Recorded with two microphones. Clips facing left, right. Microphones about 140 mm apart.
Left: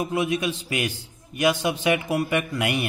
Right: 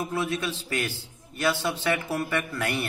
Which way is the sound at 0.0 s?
15° left (ahead or behind).